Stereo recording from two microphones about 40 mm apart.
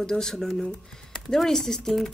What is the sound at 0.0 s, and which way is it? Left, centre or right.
A woman's voice, centre.